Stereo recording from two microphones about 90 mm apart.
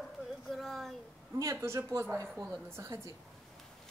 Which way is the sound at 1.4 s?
35° right (ahead or behind).